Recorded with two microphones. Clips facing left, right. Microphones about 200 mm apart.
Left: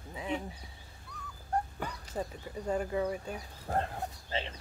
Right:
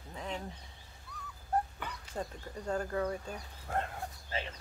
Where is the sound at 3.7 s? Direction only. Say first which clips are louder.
Left 3 dB; 35° left (ahead or behind).